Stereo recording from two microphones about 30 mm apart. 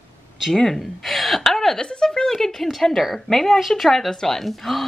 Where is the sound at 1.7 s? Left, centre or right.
Left.